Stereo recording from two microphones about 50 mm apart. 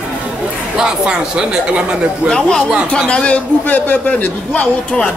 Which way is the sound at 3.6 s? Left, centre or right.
Left.